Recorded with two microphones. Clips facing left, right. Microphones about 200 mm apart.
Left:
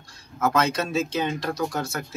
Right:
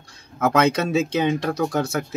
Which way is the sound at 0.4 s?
60° right (ahead or behind).